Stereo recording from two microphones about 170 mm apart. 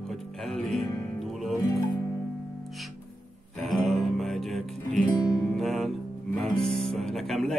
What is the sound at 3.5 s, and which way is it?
Music, centre (ahead or behind).